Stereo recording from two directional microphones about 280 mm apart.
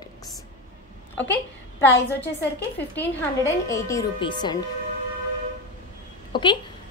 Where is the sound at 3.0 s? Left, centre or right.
Centre.